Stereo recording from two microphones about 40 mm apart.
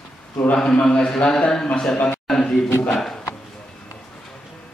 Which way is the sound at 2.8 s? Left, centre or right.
Centre.